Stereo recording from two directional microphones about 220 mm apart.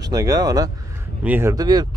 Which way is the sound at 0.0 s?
15° right (ahead or behind).